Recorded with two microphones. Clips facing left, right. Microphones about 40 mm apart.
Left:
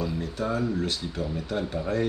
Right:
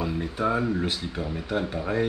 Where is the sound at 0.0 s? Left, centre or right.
Right.